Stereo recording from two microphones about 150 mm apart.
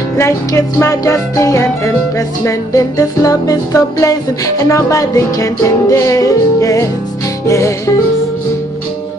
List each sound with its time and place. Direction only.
0.2 s music: 20° left (ahead or behind)